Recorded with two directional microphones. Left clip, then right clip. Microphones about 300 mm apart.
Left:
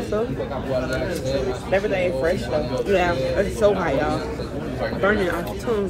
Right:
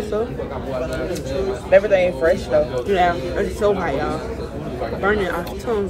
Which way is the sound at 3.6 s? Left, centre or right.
Centre.